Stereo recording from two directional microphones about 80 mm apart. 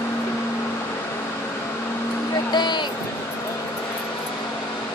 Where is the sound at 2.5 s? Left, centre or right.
Left.